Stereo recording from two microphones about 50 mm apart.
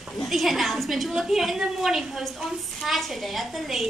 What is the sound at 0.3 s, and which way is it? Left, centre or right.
A woman's voice, centre.